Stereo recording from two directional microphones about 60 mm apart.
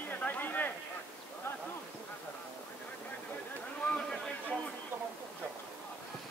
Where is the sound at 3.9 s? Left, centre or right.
Centre.